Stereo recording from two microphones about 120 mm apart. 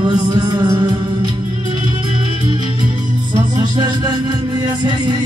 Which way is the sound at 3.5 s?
35° right (ahead or behind).